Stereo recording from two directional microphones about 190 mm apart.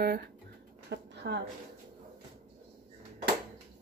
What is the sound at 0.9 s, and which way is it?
Speech, 60° right (ahead or behind).